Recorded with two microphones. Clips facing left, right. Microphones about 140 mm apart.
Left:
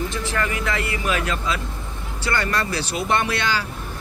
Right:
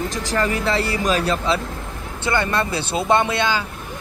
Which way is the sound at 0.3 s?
35° right (ahead or behind).